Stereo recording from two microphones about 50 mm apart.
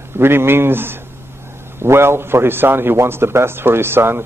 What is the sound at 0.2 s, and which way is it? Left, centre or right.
A man's voice, right.